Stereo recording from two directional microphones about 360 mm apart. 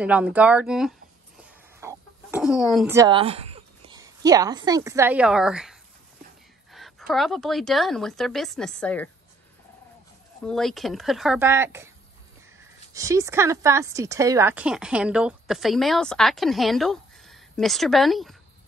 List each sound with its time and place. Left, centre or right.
0.0 s speech: centre
10.4 s speech: centre
12.9 s speech: centre